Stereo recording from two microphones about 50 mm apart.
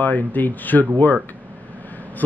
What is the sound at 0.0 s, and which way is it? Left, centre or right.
Speech, left.